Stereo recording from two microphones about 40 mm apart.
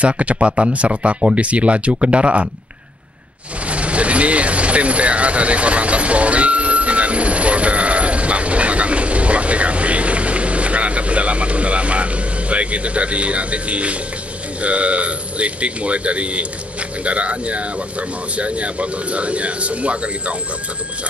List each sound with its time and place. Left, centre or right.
0.0 s speech: right
3.6 s vehicle: right
14.6 s speech: right